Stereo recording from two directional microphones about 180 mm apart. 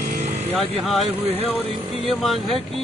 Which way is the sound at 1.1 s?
35° right (ahead or behind).